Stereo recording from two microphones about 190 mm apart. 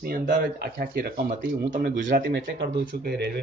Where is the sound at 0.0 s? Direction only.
50° right (ahead or behind).